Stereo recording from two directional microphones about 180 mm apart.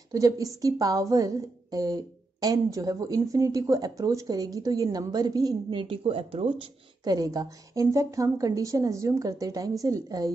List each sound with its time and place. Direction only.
0.1 s a woman's voice: 20° right (ahead or behind)